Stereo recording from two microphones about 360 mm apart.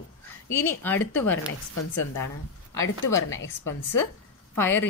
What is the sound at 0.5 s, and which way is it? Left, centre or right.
Speech, centre.